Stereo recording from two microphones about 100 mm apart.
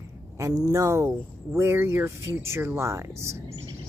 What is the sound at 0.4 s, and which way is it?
Speech, 35° right (ahead or behind).